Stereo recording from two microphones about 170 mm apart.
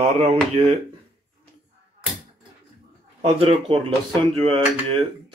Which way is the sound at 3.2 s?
30° right (ahead or behind).